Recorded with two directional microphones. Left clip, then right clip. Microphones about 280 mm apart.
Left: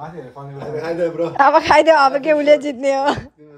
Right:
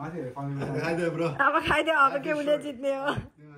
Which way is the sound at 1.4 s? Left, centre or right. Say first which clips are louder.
Left 13 dB; centre.